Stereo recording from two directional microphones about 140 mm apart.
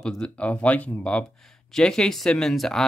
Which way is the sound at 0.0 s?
5° left (ahead or behind).